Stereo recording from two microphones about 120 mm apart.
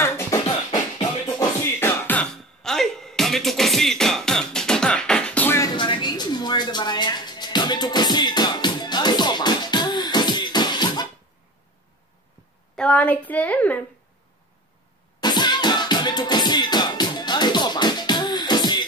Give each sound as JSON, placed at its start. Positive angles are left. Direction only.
{"t": 0.0, "sound": "beatboxing", "side_deg": 20}
{"t": 0.7, "sound": "music", "side_deg": 45}
{"t": 1.8, "sound": "music", "side_deg": 15}
{"t": 2.6, "sound": "music", "side_deg": 5}
{"t": 5.6, "sound": "a sound", "side_deg": 40}
{"t": 12.7, "sound": "a sound", "side_deg": 10}
{"t": 15.1, "sound": "music", "side_deg": 35}